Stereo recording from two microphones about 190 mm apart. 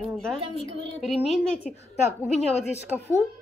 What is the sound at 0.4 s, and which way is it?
Speech, 25° right (ahead or behind).